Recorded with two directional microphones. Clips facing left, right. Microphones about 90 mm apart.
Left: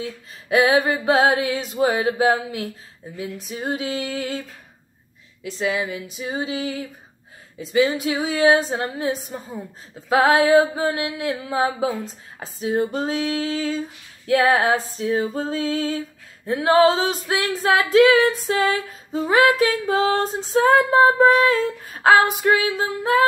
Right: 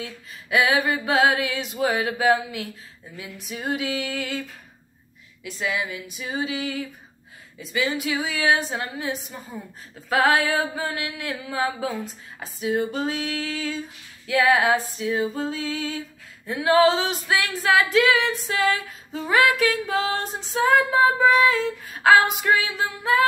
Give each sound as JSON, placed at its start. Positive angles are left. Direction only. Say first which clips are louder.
{"t": 0.0, "sound": "female singing", "louder": "left 4 dB", "side_deg": 35}
{"t": 9.9, "sound": "female singing", "louder": "left 3 dB", "side_deg": 25}